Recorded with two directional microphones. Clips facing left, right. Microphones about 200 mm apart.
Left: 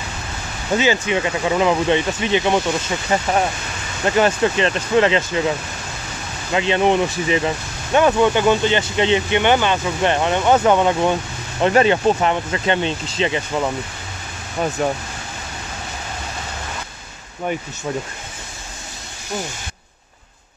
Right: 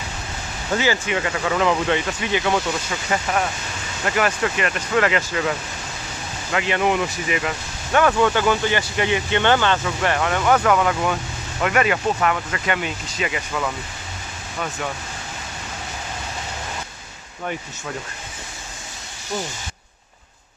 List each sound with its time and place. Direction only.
0.7 s speech: 20° left (ahead or behind)
6.5 s speech: 25° left (ahead or behind)